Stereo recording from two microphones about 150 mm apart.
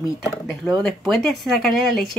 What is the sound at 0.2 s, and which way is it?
Speech, centre (ahead or behind).